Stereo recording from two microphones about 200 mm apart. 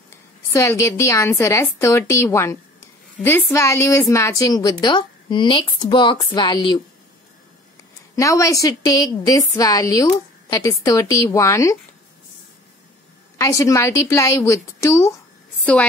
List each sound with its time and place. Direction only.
0.1 s a woman's voice: 15° left (ahead or behind)
8.2 s a woman's voice: 15° left (ahead or behind)
13.4 s a woman's voice: 15° left (ahead or behind)